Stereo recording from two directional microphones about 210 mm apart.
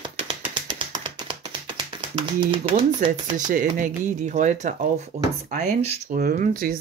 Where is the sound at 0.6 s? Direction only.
20° right (ahead or behind).